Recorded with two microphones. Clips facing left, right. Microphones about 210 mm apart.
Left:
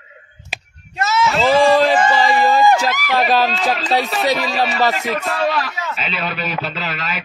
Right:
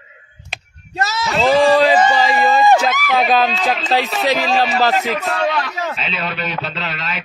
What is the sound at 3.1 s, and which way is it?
Speech, centre (ahead or behind).